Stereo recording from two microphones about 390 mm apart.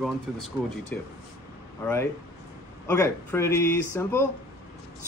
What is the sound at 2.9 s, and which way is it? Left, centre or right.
Speech, centre.